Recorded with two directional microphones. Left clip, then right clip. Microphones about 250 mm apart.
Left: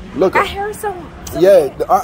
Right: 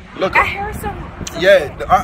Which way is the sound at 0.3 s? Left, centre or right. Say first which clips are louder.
Right 5 dB; left.